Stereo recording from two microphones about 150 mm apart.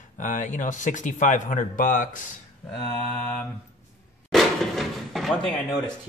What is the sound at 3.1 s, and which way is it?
Mantra, 10° left (ahead or behind).